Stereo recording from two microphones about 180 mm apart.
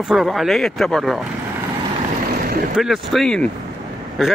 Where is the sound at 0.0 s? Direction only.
Centre (ahead or behind).